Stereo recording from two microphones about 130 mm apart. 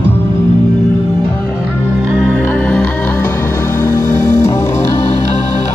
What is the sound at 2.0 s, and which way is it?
Music, 15° right (ahead or behind).